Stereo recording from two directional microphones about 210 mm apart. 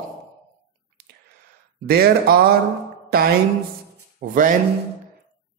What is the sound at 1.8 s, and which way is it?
Music, 45° right (ahead or behind).